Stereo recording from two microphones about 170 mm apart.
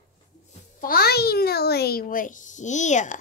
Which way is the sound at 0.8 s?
65° left (ahead or behind).